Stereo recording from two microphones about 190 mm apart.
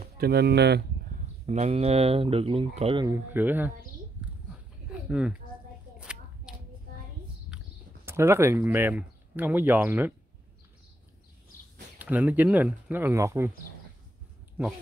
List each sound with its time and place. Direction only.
0.0 s speech: 55° right (ahead or behind)
1.4 s speech: 35° right (ahead or behind)
3.1 s speech: 10° right (ahead or behind)
5.9 s a sound: 5° right (ahead or behind)
7.5 s speech: 15° right (ahead or behind)
12.0 s speech: 10° right (ahead or behind)